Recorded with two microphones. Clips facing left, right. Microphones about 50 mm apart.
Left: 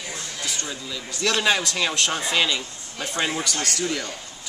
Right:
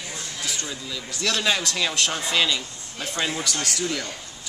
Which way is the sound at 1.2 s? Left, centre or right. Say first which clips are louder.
Left 2 dB; centre.